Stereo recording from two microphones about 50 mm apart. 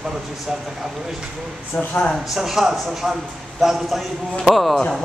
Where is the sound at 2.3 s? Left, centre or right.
Centre.